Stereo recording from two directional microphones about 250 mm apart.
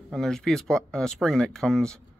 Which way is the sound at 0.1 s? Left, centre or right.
Centre.